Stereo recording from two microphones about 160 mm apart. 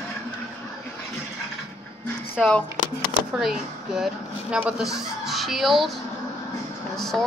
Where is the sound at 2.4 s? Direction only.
5° left (ahead or behind).